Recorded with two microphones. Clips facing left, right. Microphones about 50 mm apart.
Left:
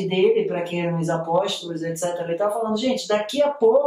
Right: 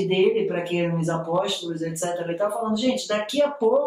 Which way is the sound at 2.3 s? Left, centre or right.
Centre.